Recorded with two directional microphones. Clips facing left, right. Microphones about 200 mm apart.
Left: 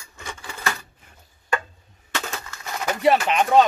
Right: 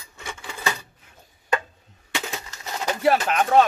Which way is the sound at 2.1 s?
15° right (ahead or behind).